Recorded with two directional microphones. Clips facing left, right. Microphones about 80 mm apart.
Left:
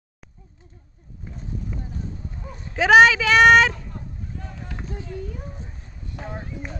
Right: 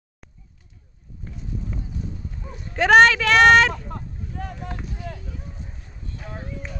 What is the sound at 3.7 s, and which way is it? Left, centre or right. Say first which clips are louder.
Hubbub: right 4 dB; right.